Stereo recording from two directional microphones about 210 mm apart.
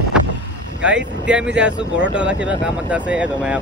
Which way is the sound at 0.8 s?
5° right (ahead or behind).